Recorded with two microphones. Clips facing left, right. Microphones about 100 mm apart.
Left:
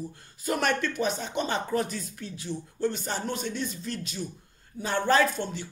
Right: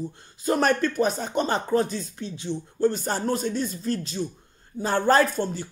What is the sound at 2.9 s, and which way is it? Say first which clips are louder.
Speech: right 6 dB; 40° right (ahead or behind).